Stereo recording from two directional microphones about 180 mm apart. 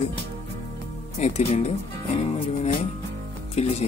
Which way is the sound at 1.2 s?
35° left (ahead or behind).